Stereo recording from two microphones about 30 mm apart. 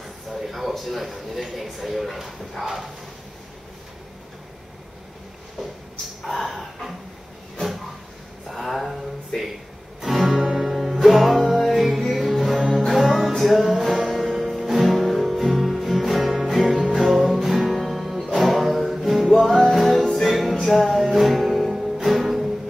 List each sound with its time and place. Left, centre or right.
0.3 s a man's voice: centre
5.6 s a sound: centre
6.2 s dog: centre
8.5 s a sound: centre
9.3 s speech: left
10.0 s music: centre
20.9 s music: centre